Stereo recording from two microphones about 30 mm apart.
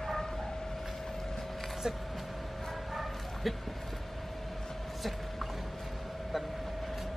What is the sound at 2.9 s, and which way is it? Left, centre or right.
Bow-wow, centre.